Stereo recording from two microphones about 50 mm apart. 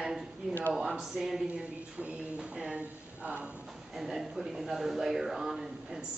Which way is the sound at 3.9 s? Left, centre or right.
Centre.